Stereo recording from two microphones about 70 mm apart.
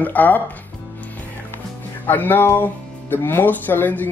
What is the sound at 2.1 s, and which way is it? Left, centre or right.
Speech, left.